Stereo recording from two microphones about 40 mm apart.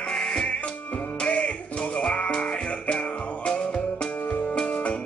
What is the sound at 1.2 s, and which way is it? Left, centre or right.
Music, left.